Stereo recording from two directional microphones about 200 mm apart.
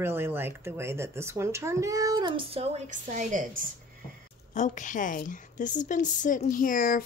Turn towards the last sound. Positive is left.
turn(degrees=45)  # may be behind; listen again after turning